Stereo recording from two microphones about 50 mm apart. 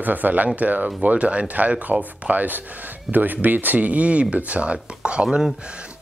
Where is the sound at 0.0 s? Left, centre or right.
Right.